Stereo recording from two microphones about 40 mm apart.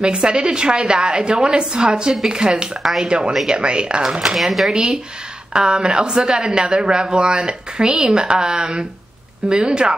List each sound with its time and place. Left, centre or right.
0.0 s a woman's voice: right
2.8 s speech: centre
3.1 s a woman's voice: right
4.4 s speech: centre
4.6 s a woman's voice: right